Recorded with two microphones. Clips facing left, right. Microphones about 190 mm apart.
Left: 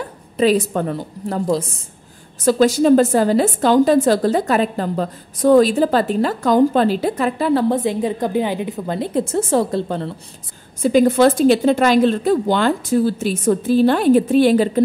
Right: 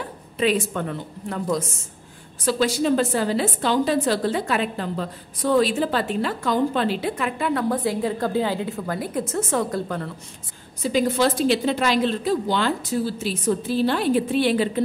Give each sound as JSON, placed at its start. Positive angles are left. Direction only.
{"t": 0.4, "sound": "a woman's voice", "side_deg": 40}
{"t": 10.8, "sound": "a woman's voice", "side_deg": 50}